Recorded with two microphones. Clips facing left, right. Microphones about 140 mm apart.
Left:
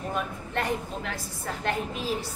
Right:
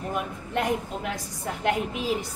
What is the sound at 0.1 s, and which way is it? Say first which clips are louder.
A woman's voice: right 2 dB; 15° right (ahead or behind).